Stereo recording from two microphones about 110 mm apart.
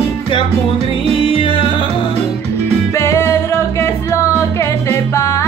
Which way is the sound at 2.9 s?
25° left (ahead or behind).